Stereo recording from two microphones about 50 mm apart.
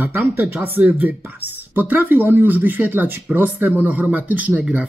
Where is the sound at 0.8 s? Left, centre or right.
Right.